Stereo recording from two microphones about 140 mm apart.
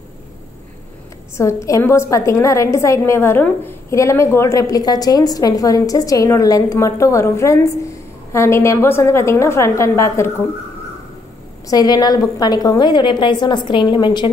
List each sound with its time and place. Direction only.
1.3 s a woman's voice: 20° left (ahead or behind)
11.6 s a woman's voice: 25° left (ahead or behind)